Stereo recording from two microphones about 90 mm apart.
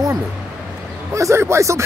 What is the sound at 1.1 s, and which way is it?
Speech, 35° right (ahead or behind).